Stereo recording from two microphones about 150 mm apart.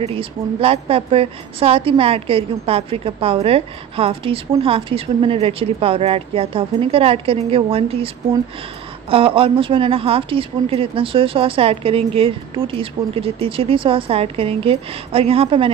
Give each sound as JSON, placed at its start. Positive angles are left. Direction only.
{"t": 0.0, "sound": "a woman's voice", "side_deg": -40}
{"t": 9.1, "sound": "a woman's voice", "side_deg": -35}